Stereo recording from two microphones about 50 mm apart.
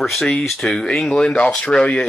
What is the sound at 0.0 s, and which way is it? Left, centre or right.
Speech, centre.